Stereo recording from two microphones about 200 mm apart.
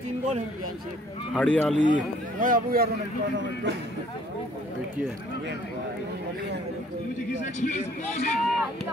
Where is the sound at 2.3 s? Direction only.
45° right (ahead or behind).